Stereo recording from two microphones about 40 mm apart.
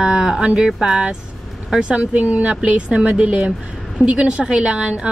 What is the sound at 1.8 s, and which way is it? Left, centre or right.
Speech, right.